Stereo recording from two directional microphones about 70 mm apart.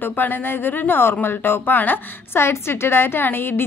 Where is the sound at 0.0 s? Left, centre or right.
Left.